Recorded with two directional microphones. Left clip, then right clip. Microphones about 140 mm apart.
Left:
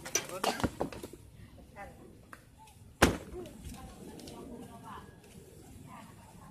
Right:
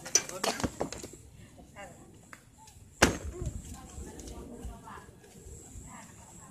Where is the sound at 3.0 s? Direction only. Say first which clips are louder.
Right 1 dB; 15° left (ahead or behind).